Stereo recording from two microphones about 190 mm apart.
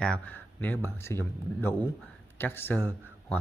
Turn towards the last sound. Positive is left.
turn(degrees=10)  # may be behind; listen again after turning